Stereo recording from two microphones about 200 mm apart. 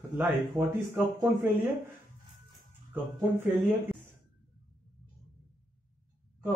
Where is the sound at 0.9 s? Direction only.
10° right (ahead or behind).